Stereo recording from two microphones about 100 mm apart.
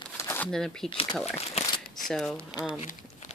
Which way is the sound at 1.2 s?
90° left.